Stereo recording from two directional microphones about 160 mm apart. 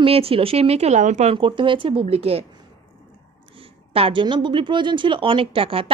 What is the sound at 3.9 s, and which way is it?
Speech, 35° right (ahead or behind).